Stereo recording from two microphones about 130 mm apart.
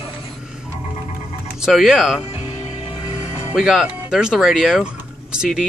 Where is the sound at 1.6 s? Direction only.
5° right (ahead or behind).